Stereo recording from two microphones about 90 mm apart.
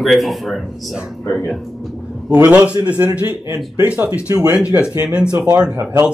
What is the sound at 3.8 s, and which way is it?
Speech, 15° right (ahead or behind).